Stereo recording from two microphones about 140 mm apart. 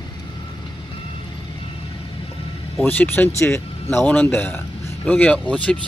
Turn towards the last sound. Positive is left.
turn(degrees=10)  # may be behind; listen again after turning